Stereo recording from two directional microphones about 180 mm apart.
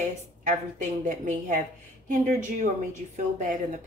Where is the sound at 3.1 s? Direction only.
45° right (ahead or behind).